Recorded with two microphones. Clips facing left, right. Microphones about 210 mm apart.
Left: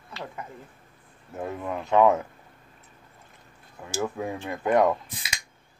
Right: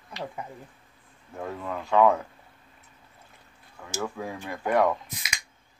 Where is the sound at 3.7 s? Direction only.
20° left (ahead or behind).